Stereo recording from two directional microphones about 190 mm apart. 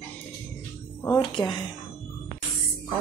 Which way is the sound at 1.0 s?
15° left (ahead or behind).